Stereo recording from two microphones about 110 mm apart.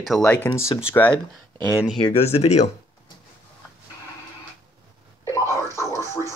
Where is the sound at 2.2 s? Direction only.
75° left (ahead or behind).